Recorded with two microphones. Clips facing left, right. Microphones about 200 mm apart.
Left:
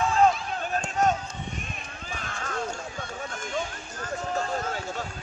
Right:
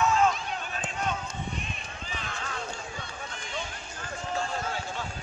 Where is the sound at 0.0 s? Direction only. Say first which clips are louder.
Left 3 dB; 35° left (ahead or behind).